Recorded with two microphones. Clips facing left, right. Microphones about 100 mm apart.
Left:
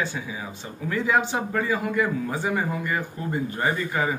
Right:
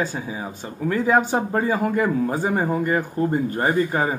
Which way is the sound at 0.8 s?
40° right (ahead or behind).